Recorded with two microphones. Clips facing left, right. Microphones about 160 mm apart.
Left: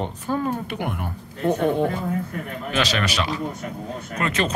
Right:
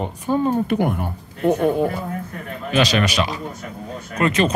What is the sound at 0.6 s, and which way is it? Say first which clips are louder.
Speech: right 8 dB; 40° right (ahead or behind).